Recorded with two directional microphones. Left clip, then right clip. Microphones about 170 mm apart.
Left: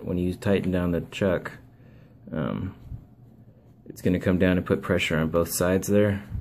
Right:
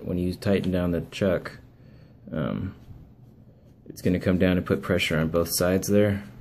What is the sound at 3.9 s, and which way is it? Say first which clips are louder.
Speech: even; 10° left (ahead or behind).